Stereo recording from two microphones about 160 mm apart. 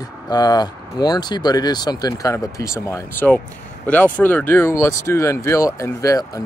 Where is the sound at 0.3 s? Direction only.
25° left (ahead or behind).